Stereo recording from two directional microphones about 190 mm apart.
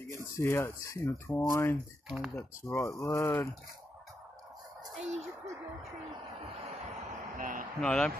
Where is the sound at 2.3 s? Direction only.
15° left (ahead or behind).